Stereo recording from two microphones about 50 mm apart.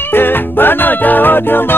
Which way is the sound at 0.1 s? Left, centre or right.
Left.